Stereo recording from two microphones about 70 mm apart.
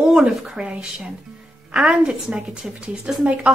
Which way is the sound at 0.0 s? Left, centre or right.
Centre.